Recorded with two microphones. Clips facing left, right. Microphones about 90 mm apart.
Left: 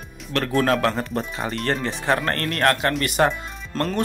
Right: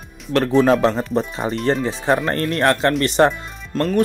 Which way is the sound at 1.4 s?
30° right (ahead or behind).